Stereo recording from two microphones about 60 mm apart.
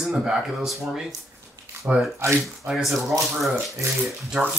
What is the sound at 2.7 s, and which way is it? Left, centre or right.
Speech, centre.